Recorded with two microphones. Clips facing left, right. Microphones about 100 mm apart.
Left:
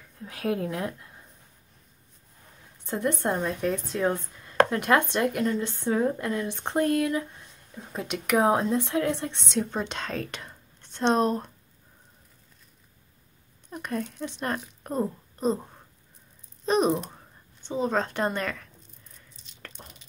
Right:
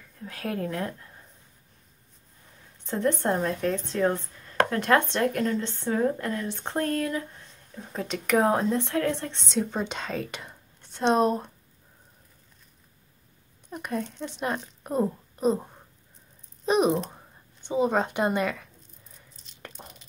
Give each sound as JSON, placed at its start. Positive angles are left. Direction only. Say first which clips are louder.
{"t": 0.2, "sound": "speech", "louder": "left 3 dB", "side_deg": 15}
{"t": 2.8, "sound": "speech", "louder": "right 2 dB", "side_deg": 5}
{"t": 13.7, "sound": "a woman's voice", "louder": "even", "side_deg": -5}
{"t": 19.3, "sound": "a sound", "louder": "right 2 dB", "side_deg": 0}